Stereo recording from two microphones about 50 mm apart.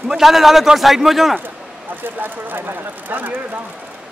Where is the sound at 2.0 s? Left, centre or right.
Right.